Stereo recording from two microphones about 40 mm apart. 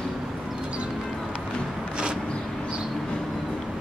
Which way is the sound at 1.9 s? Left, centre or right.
Right.